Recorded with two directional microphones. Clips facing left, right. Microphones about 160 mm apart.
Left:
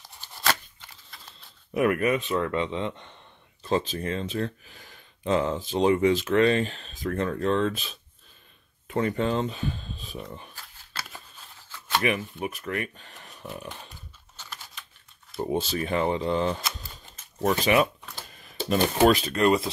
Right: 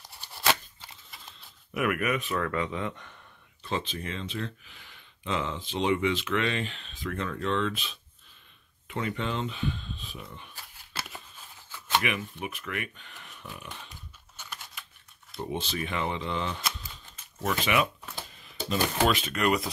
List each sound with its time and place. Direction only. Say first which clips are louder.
0.2 s scissors: even; 15° right (ahead or behind)
1.7 s speech: left 5 dB; 30° left (ahead or behind)
3.6 s speech: left 7 dB; 40° left (ahead or behind)
12.0 s speech: left 5 dB; 35° left (ahead or behind)
15.5 s speech: left 6 dB; 40° left (ahead or behind)
16.7 s typewriter: left 1 dB; 40° left (ahead or behind)
19.0 s speech: left 7 dB; 35° left (ahead or behind)